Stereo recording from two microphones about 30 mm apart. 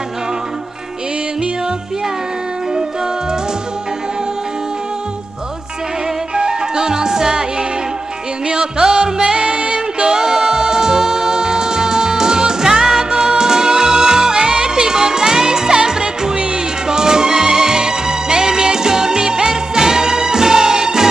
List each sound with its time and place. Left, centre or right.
6.3 s music: right
8.5 s music: right